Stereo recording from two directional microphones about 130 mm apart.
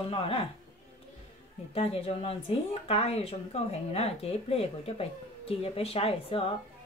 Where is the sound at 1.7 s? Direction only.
50° left (ahead or behind).